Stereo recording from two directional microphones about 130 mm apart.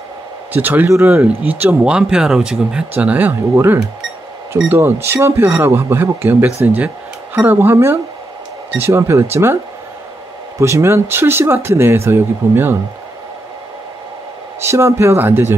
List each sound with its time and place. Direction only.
0.5 s speech: 15° right (ahead or behind)
10.6 s speech: 20° right (ahead or behind)
14.6 s speech: 20° right (ahead or behind)